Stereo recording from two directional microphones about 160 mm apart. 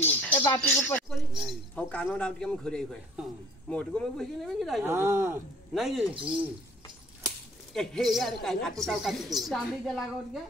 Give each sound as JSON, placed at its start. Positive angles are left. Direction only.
{"t": 0.0, "sound": "a sound", "side_deg": 10}
{"t": 1.1, "sound": "a man's voice", "side_deg": 0}
{"t": 4.8, "sound": "speech", "side_deg": -15}
{"t": 5.8, "sound": "a man's voice", "side_deg": 0}
{"t": 7.7, "sound": "a man's voice", "side_deg": 5}